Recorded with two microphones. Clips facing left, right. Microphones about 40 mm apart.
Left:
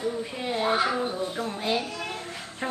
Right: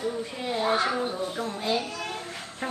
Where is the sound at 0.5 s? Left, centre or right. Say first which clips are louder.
Even; centre.